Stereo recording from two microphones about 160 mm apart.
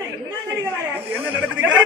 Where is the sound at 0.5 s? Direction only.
15° right (ahead or behind).